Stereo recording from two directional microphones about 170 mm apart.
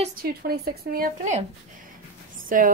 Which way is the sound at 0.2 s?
60° right (ahead or behind).